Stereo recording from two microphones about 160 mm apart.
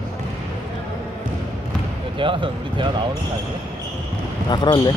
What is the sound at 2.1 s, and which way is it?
Speech, 30° right (ahead or behind).